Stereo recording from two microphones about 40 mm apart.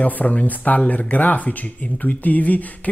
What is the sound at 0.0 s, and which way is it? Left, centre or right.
Speech, left.